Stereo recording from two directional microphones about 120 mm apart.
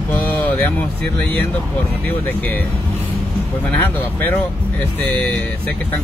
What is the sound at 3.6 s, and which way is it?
Speech, 15° left (ahead or behind).